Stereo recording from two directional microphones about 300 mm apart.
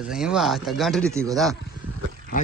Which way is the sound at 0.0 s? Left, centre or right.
Centre.